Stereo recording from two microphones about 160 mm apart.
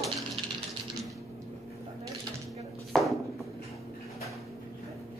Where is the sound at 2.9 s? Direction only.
Centre (ahead or behind).